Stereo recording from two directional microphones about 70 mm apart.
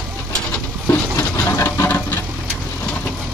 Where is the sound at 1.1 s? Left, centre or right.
Left.